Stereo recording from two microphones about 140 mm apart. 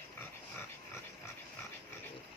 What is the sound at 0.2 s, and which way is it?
Dog, 15° left (ahead or behind).